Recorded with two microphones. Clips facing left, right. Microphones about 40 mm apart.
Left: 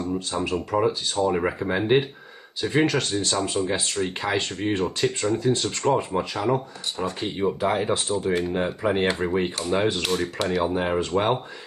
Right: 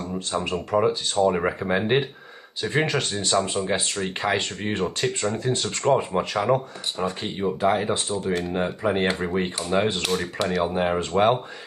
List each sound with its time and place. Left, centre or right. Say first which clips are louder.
0.0 s speech: left 1 dB; centre